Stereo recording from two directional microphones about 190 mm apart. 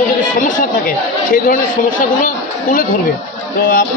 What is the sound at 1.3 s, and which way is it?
A man's voice, 45° left (ahead or behind).